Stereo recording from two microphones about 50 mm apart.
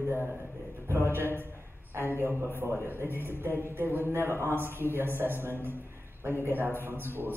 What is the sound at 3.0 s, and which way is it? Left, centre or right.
Speech, left.